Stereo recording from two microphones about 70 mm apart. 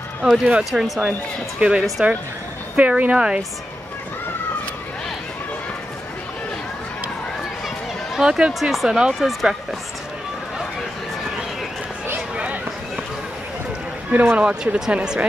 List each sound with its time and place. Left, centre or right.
0.2 s speech: centre
0.7 s speech: centre
1.6 s speech: centre
8.2 s speech: centre
12.4 s a sound: centre
14.1 s speech: right